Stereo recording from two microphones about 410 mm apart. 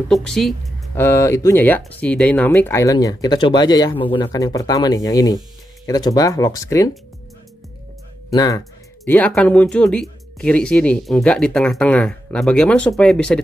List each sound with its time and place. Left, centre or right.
0.1 s speech: centre
8.3 s speech: centre